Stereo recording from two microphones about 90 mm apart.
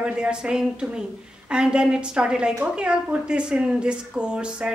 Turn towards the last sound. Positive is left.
turn(degrees=-10)  # may be behind; listen again after turning